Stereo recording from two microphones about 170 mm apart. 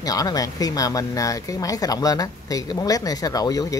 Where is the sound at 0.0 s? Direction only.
20° left (ahead or behind).